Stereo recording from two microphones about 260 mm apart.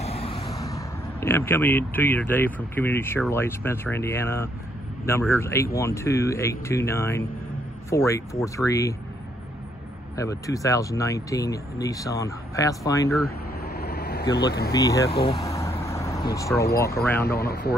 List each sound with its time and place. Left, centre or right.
0.0 s speech: left
10.1 s speech: centre
13.7 s vehicle: left
14.7 s vehicle: centre
16.3 s speech: centre
17.3 s speech: left